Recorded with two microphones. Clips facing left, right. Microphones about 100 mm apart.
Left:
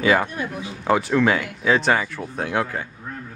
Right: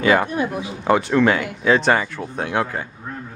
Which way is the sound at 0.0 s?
Centre (ahead or behind).